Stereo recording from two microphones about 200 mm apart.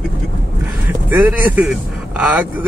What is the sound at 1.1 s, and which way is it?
Speech, 10° right (ahead or behind).